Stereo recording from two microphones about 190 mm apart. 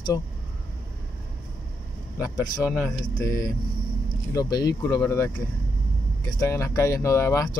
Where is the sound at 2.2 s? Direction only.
15° left (ahead or behind).